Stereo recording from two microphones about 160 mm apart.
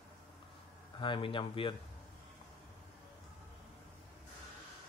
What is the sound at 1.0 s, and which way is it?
Speech, 30° left (ahead or behind).